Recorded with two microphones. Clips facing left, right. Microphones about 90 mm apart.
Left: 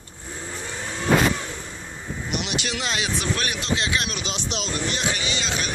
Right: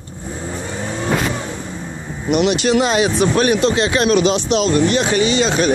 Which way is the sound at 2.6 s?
40° right (ahead or behind).